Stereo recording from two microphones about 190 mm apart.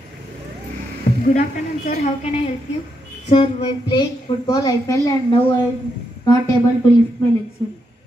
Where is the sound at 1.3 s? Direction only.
40° left (ahead or behind); by 5.1 s 20° left (ahead or behind).